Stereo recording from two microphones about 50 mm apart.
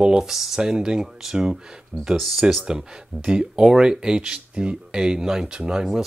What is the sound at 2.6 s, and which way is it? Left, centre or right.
Speech, centre.